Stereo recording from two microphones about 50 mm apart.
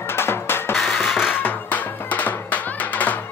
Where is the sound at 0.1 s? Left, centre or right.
Left.